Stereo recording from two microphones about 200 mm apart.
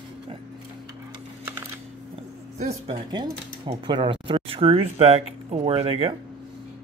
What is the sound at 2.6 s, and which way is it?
Speech, 35° right (ahead or behind).